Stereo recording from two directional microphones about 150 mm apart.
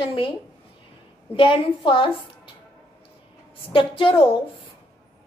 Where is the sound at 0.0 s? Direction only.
35° left (ahead or behind).